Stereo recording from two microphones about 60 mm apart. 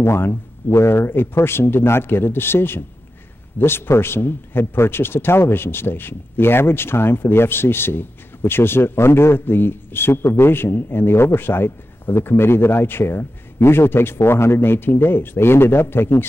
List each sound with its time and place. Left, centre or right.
0.0 s a man's voice: left